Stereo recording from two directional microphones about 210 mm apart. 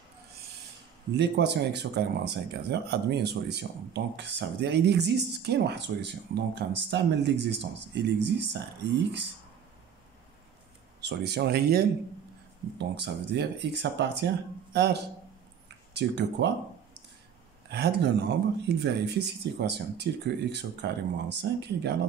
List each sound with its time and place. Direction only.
1.1 s speech: 55° right (ahead or behind)
11.0 s speech: 50° right (ahead or behind)
17.6 s speech: 50° right (ahead or behind)